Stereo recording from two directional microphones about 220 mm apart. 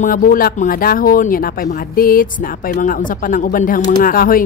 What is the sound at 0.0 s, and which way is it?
Speech, 40° left (ahead or behind).